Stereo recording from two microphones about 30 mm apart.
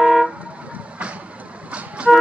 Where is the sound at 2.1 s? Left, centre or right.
Centre.